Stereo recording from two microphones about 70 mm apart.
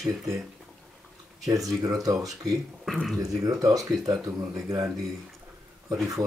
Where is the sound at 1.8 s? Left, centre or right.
Right.